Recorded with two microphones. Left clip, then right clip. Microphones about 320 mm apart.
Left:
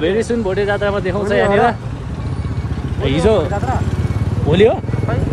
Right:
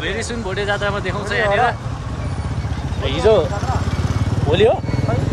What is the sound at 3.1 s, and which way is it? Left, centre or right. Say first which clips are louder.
Speech: even; centre.